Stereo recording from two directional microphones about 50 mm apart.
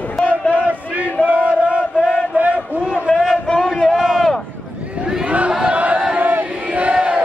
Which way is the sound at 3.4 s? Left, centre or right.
Centre.